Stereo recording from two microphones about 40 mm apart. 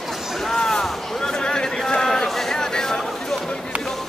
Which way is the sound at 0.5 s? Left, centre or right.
Centre.